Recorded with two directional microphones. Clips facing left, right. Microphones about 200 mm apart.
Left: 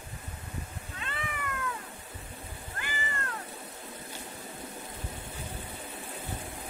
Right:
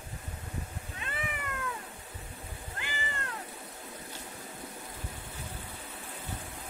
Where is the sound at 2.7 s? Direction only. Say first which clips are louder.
Left 2 dB; 20° right (ahead or behind).